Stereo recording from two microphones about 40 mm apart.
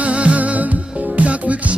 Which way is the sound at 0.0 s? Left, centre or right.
Right.